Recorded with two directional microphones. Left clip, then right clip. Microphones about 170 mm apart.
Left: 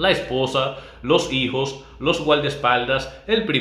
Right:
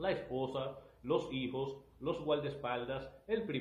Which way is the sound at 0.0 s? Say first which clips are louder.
Left 17 dB; 15° left (ahead or behind).